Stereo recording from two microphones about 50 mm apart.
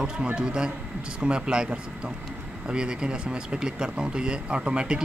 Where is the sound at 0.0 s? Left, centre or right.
Centre.